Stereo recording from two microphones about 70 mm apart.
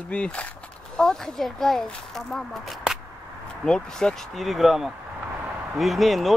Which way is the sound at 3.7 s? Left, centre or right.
Centre.